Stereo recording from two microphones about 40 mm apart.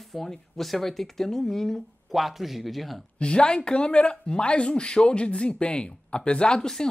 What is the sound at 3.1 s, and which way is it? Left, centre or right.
Speech, left.